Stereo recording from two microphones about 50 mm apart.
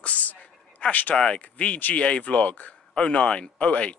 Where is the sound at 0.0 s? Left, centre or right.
Left.